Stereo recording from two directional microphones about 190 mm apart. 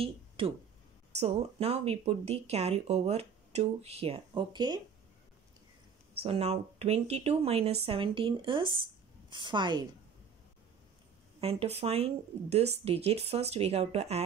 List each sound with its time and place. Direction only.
1.1 s a woman's voice: 35° right (ahead or behind)
6.2 s a woman's voice: 35° right (ahead or behind)
11.4 s speech: 35° right (ahead or behind)